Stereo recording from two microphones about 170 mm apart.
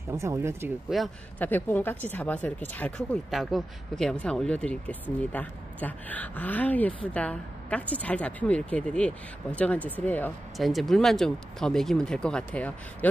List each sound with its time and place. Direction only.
0.1 s speech: 15° right (ahead or behind)
0.8 s speech: centre (ahead or behind)
1.4 s speech: 10° left (ahead or behind)